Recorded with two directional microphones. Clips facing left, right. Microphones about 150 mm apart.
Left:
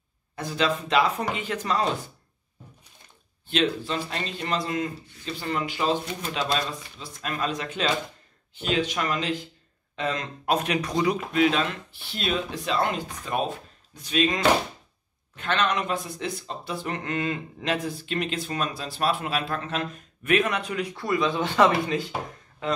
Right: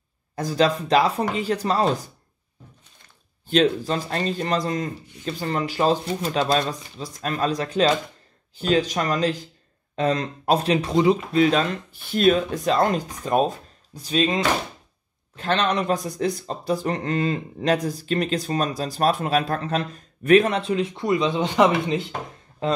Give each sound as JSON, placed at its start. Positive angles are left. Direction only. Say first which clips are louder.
{"t": 0.4, "sound": "speech", "louder": "right 5 dB", "side_deg": -40}
{"t": 3.4, "sound": "speech", "louder": "right 6 dB", "side_deg": -40}